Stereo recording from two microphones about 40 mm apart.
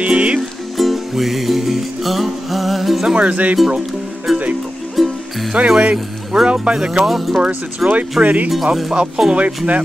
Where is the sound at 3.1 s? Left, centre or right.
Right.